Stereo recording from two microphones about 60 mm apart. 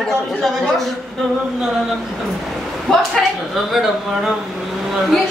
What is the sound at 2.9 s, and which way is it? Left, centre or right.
Speech, centre.